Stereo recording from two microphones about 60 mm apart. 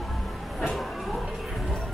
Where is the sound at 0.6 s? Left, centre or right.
Centre.